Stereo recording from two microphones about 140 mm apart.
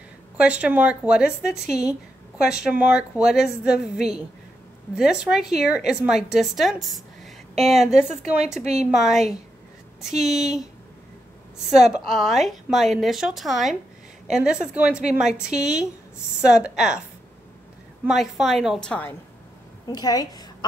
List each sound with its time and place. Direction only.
0.4 s a woman's voice: 10° right (ahead or behind)
11.6 s a woman's voice: 5° right (ahead or behind)
18.0 s a woman's voice: centre (ahead or behind)
19.9 s a woman's voice: 30° left (ahead or behind)